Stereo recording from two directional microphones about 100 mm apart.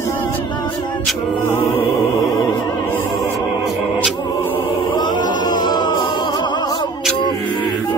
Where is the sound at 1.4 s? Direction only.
25° left (ahead or behind).